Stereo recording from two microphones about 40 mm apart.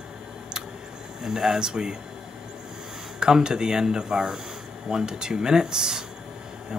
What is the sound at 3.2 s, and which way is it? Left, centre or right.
Speech, centre.